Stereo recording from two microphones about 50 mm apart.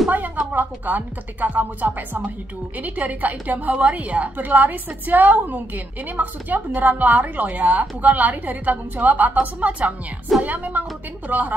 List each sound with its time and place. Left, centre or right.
0.5 s a woman's voice: right